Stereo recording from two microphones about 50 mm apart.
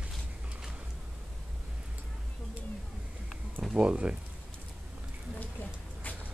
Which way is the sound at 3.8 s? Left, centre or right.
Right.